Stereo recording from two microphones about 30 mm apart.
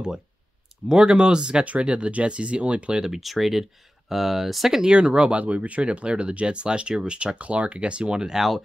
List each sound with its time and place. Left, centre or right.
0.8 s speech: right
1.6 s speech: right
3.2 s speech: centre
4.8 s speech: right
5.4 s speech: right
7.3 s speech: right
7.8 s speech: right